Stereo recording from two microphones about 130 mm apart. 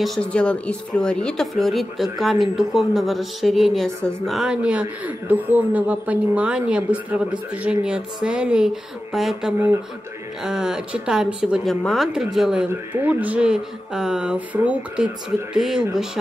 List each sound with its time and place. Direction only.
0.0 s a woman's voice: 5° left (ahead or behind)
12.7 s a woman's voice: 15° right (ahead or behind)